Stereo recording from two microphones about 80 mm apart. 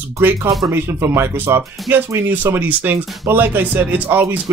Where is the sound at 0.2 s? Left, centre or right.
Right.